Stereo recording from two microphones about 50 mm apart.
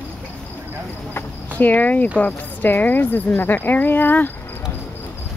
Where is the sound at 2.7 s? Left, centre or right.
Left.